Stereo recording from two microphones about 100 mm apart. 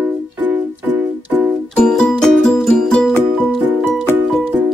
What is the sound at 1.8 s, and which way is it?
Music, 5° left (ahead or behind).